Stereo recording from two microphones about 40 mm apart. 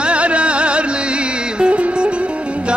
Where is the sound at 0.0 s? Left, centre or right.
Right.